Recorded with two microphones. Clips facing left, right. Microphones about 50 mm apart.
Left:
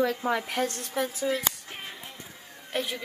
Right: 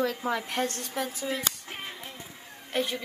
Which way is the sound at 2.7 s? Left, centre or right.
Centre.